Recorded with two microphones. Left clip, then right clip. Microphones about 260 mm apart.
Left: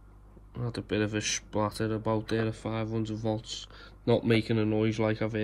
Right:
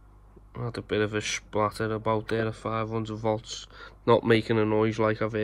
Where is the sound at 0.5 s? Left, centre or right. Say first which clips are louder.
Right 3 dB; right.